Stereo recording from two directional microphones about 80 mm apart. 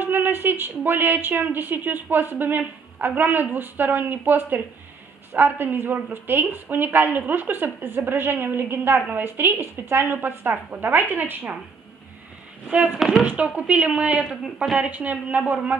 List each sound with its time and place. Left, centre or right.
0.0 s a woman's voice: right
12.7 s a woman's voice: centre
14.2 s speech: centre
14.8 s a woman's voice: centre